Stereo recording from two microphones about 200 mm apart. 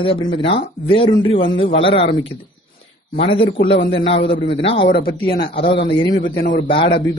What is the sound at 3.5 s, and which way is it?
Speech, 60° left (ahead or behind).